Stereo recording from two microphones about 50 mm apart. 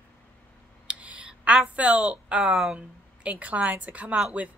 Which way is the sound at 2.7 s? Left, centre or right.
Right.